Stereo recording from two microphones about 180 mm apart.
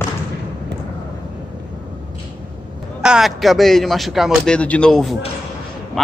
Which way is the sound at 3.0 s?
5° right (ahead or behind).